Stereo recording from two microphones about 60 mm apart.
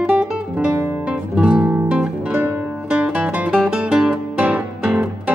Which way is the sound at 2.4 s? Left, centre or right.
Right.